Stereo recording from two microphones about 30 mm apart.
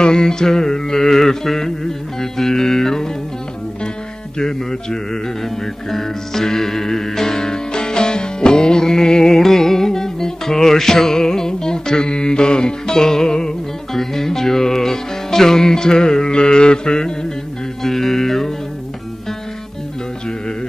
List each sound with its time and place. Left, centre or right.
0.0 s music: left
4.4 s music: left
9.3 s music: centre
13.9 s music: centre
17.8 s music: centre